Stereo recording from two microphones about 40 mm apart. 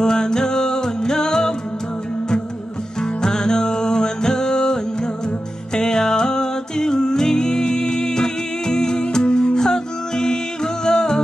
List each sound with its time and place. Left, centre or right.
0.0 s music: centre
3.0 s music: centre